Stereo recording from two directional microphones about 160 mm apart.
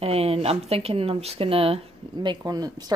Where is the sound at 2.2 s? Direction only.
25° right (ahead or behind).